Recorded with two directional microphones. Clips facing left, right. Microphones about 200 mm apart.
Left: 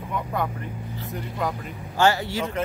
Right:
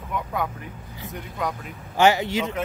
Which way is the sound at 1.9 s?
20° right (ahead or behind).